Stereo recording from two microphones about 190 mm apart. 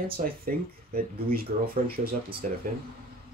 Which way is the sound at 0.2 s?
40° right (ahead or behind).